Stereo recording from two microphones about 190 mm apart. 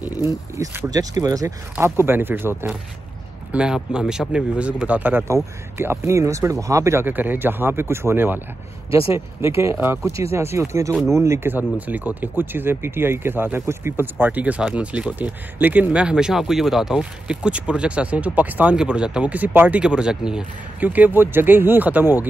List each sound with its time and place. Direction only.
0.6 s speech: 20° right (ahead or behind)